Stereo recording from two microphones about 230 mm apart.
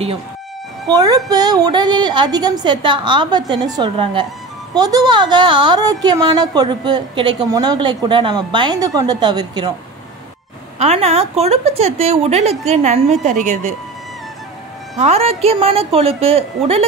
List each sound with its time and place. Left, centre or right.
0.8 s a woman's voice: centre
10.8 s a woman's voice: right
15.0 s a woman's voice: right